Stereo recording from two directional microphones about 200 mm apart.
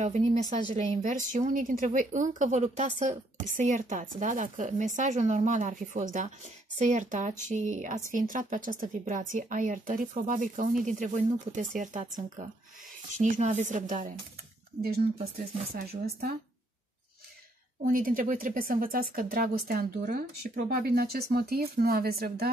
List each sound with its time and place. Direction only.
0.0 s speech: 35° right (ahead or behind)
17.8 s speech: 45° right (ahead or behind)